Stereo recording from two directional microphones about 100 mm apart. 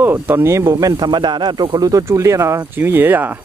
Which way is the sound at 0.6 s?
45° right (ahead or behind).